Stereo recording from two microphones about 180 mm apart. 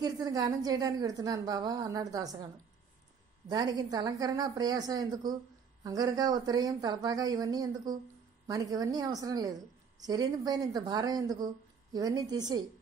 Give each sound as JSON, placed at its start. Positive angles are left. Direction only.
{"t": 0.0, "sound": "speech", "side_deg": -20}
{"t": 3.4, "sound": "speech", "side_deg": -25}